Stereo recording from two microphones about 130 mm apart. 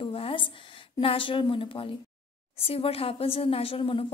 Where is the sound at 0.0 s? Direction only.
45° left (ahead or behind).